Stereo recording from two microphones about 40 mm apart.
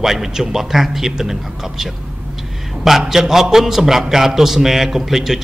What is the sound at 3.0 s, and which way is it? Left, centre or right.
A man's voice, centre.